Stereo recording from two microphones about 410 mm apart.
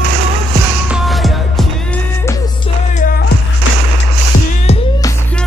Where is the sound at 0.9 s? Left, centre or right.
Centre.